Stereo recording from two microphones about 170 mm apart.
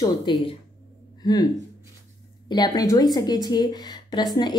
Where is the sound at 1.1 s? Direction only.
25° left (ahead or behind).